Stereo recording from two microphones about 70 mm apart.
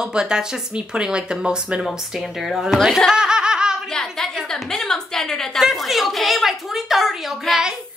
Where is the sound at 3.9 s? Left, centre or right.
Centre.